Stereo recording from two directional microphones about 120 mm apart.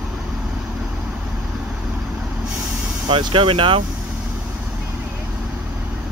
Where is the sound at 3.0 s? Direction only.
45° right (ahead or behind).